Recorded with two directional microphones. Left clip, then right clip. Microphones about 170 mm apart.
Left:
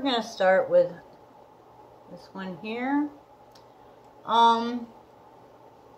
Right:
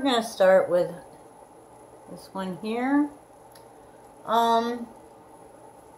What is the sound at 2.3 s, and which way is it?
Speech, 15° right (ahead or behind).